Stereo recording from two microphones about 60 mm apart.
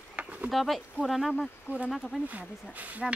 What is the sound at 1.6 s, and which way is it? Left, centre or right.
Speech, right.